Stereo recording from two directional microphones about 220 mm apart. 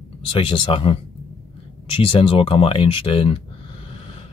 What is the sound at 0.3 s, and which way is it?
Speech, 25° left (ahead or behind).